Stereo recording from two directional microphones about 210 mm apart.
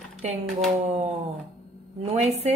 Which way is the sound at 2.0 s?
30° right (ahead or behind).